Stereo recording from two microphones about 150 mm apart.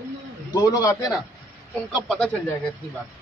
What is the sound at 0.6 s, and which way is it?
Speech, 25° left (ahead or behind).